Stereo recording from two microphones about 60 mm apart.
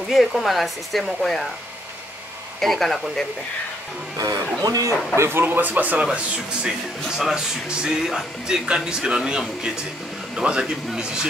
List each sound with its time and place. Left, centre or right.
0.1 s speech: centre
2.6 s speech: centre
4.2 s speech: right
5.1 s speech: right
5.4 s speech: right
6.1 s speech: centre